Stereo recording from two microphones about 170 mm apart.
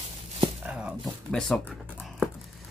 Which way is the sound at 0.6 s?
5° right (ahead or behind).